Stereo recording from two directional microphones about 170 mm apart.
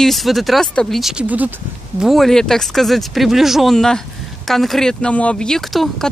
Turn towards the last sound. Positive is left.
turn(degrees=0)  # may be behind; listen again after turning